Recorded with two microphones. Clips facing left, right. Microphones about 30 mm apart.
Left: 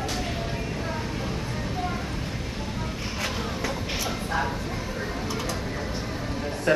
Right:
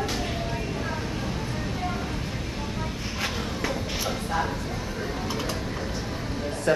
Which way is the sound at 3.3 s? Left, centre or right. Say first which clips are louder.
Even; centre.